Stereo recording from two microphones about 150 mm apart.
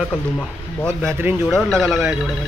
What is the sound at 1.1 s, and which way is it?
Speech, 15° right (ahead or behind).